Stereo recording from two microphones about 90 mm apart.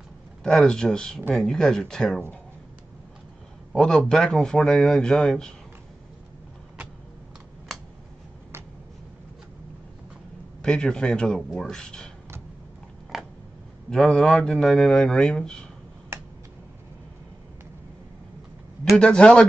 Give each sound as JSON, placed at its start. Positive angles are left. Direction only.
{"t": 0.4, "sound": "speech", "side_deg": 5}
{"t": 3.7, "sound": "a man's voice", "side_deg": 5}
{"t": 10.6, "sound": "speech", "side_deg": 10}
{"t": 13.1, "sound": "a sound", "side_deg": 0}
{"t": 13.8, "sound": "a man's voice", "side_deg": 0}
{"t": 16.1, "sound": "finger snapping", "side_deg": -30}
{"t": 18.9, "sound": "speech", "side_deg": 10}